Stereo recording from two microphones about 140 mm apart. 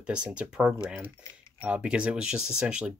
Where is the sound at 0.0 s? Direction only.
5° right (ahead or behind).